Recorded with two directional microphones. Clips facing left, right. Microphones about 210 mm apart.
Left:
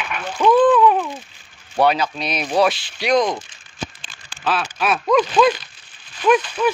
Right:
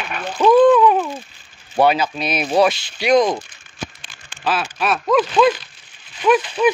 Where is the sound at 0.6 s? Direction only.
Centre (ahead or behind).